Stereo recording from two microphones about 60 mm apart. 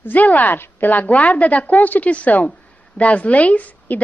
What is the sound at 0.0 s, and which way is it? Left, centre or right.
A woman's voice, left.